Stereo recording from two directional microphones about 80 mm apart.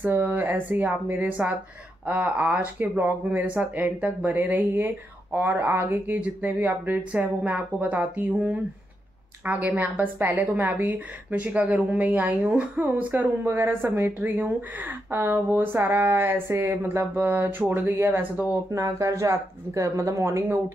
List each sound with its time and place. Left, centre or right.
0.0 s a woman's voice: right
6.1 s a woman's voice: centre
18.7 s speech: right